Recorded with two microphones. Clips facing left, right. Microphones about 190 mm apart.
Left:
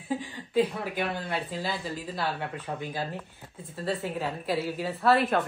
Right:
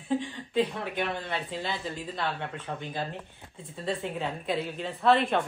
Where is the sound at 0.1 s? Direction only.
5° left (ahead or behind).